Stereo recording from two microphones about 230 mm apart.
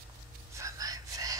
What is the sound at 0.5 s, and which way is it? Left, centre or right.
Whispering, centre.